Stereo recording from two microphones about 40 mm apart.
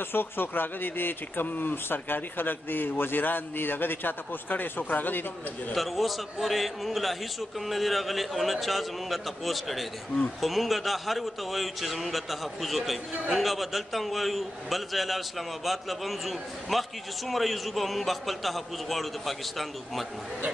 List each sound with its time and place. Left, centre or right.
0.1 s speech: left
5.8 s a man's voice: centre